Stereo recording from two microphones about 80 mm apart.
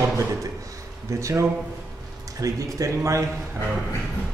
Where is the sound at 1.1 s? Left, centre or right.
Right.